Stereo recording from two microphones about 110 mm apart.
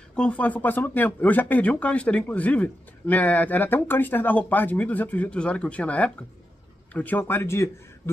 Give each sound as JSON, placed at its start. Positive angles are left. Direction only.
{"t": 0.1, "sound": "speech", "side_deg": 10}